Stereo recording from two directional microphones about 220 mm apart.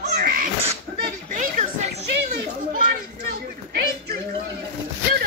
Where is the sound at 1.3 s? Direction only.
35° right (ahead or behind).